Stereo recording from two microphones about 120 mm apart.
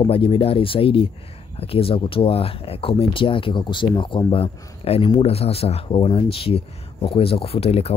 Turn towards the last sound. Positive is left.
turn(degrees=55)  # may be behind; listen again after turning